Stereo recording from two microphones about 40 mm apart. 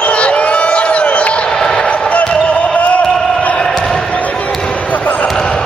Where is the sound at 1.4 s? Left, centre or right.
Centre.